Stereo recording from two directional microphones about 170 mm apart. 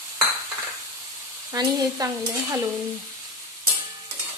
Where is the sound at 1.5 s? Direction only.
20° right (ahead or behind).